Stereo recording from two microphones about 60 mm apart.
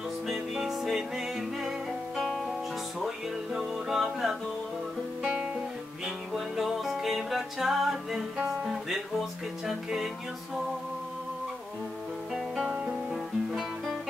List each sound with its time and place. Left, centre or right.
0.3 s music: centre
3.5 s music: centre
5.2 s guitar: centre
6.0 s music: centre
12.4 s guitar: centre